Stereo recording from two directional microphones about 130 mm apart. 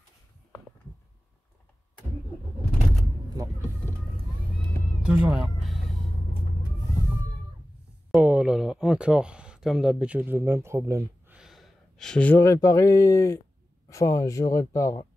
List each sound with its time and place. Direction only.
5.0 s a sound: 5° right (ahead or behind)
8.2 s speech: 10° right (ahead or behind)
11.3 s gasp: centre (ahead or behind)
12.4 s speech: 25° left (ahead or behind)